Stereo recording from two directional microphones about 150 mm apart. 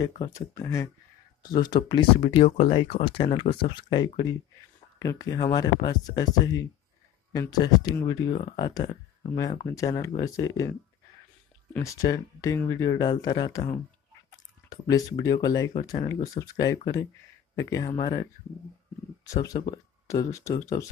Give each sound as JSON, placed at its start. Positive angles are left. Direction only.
{"t": 0.0, "sound": "speech", "side_deg": 25}
{"t": 2.1, "sound": "speech", "side_deg": 40}
{"t": 11.8, "sound": "speech", "side_deg": 20}
{"t": 19.2, "sound": "speech", "side_deg": 20}